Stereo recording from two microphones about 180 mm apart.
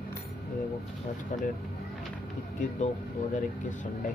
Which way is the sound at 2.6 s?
40° left (ahead or behind).